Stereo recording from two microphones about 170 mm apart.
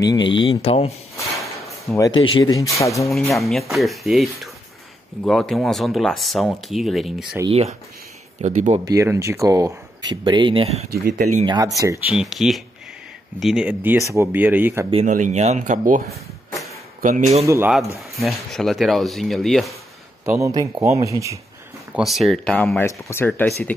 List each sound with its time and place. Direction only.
0.0 s speech: 25° left (ahead or behind)
2.0 s speech: 25° left (ahead or behind)
3.1 s speech: centre (ahead or behind)
7.4 s speech: 35° right (ahead or behind)
8.8 s speech: 20° right (ahead or behind); by 10.9 s 35° right (ahead or behind)
11.1 s speech: 50° right (ahead or behind)
11.4 s speech: 25° right (ahead or behind)
12.1 s speech: 5° right (ahead or behind)
15.0 s speech: 50° right (ahead or behind)
18.2 s speech: centre (ahead or behind)
20.2 s speech: 20° right (ahead or behind)
21.9 s speech: centre (ahead or behind)